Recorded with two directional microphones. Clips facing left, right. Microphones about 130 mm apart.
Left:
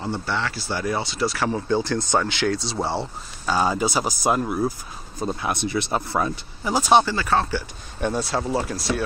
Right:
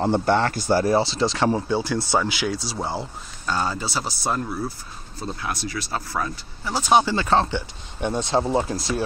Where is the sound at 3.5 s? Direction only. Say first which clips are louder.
Left 4 dB; 15° left (ahead or behind).